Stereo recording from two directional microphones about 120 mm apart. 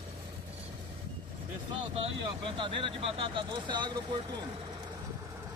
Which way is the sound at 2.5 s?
45° right (ahead or behind).